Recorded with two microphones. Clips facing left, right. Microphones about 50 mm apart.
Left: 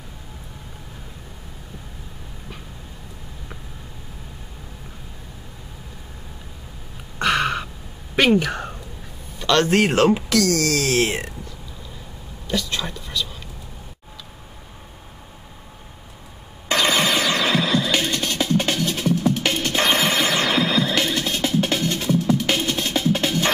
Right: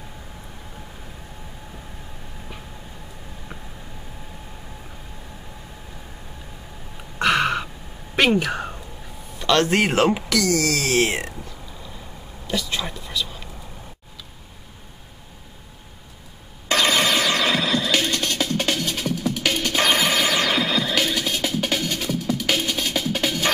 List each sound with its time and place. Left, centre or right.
7.2 s a sound: centre
8.2 s speech: centre
12.4 s speech: centre
16.6 s music: centre
19.6 s music: centre
23.2 s music: centre